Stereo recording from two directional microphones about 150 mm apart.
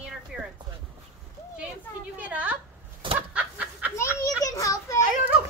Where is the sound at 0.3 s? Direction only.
5° right (ahead or behind).